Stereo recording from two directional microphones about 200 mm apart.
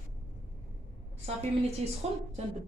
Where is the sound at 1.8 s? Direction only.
30° right (ahead or behind).